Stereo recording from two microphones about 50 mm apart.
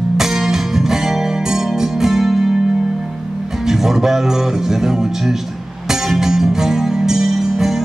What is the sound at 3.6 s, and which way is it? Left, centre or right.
Speech, centre.